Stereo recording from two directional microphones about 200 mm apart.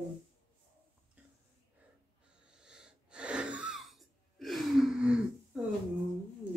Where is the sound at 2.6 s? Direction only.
5° right (ahead or behind).